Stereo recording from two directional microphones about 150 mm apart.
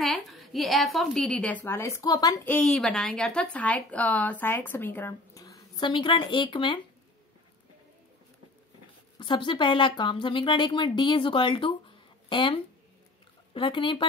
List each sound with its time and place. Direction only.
0.0 s a woman's voice: centre (ahead or behind); by 2.4 s 25° left (ahead or behind)
2.4 s speech: 5° left (ahead or behind)
5.4 s speech: 30° left (ahead or behind)
9.2 s speech: 30° left (ahead or behind)